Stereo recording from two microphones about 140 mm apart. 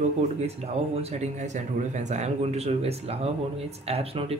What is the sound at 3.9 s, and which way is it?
Speech, 45° right (ahead or behind).